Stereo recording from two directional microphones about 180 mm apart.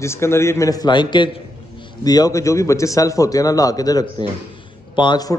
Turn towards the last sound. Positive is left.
turn(degrees=25)  # may be behind; listen again after turning